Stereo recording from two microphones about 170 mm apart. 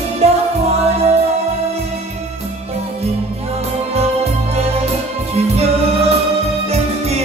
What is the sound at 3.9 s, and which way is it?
Music, 35° right (ahead or behind).